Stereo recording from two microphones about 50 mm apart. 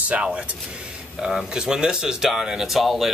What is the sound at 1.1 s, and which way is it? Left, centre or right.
Speech, centre.